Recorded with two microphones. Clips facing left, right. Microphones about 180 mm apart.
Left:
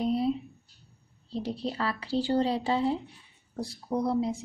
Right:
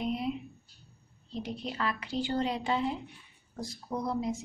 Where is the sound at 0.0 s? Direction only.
35° left (ahead or behind).